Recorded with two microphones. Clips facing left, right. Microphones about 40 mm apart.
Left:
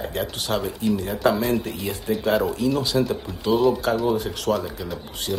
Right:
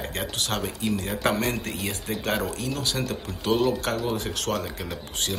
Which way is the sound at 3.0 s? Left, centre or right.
Centre.